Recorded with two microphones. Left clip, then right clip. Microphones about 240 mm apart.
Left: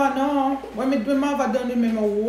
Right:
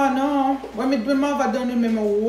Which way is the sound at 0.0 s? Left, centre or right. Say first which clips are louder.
Right 1 dB; centre.